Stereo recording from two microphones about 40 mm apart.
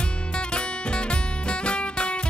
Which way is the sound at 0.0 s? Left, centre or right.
Left.